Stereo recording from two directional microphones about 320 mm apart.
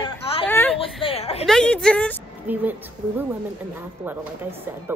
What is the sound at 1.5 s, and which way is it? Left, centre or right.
Speech, centre.